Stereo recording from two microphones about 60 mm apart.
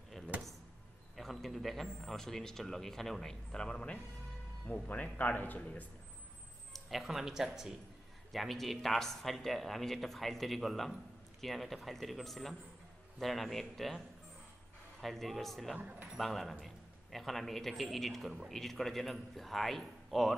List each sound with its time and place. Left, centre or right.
1.1 s a man's voice: centre
4.8 s speech: left
6.7 s speech: centre
15.8 s speech: right
16.2 s a man's voice: centre